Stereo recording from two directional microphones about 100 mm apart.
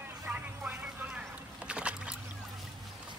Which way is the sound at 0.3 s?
20° right (ahead or behind).